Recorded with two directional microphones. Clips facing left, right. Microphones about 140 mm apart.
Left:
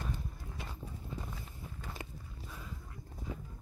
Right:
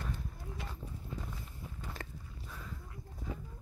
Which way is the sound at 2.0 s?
15° left (ahead or behind).